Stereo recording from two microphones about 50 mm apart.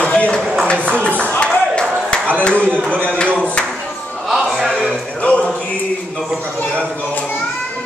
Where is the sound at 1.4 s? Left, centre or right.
Left.